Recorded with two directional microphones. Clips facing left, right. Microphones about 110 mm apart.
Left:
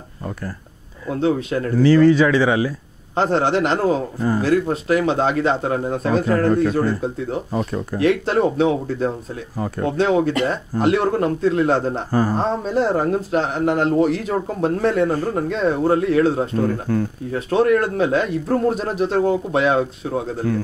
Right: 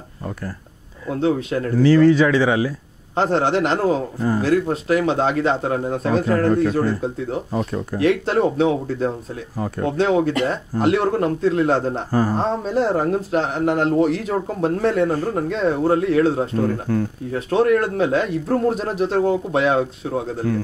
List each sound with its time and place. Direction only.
1.5 s speech: 15° left (ahead or behind)
17.5 s speech: 15° left (ahead or behind)